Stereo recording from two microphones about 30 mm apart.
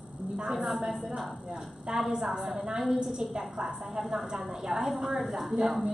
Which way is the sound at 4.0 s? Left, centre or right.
Centre.